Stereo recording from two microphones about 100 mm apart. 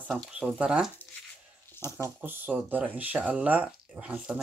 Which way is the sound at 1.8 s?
25° left (ahead or behind).